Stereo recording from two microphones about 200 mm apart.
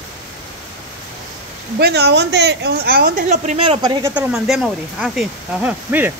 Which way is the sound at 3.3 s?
35° right (ahead or behind).